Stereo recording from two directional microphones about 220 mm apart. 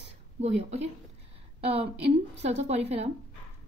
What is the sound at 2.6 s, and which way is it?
Speech, 30° right (ahead or behind).